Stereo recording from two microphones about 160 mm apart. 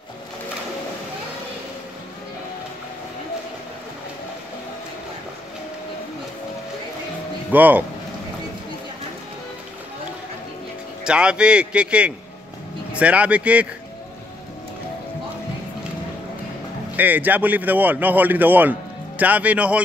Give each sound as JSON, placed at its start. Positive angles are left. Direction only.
{"t": 7.5, "sound": "speech", "side_deg": -10}
{"t": 11.1, "sound": "speech", "side_deg": -5}
{"t": 16.9, "sound": "speech", "side_deg": -10}